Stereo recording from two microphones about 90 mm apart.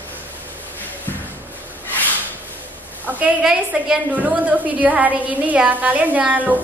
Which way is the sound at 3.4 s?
10° right (ahead or behind).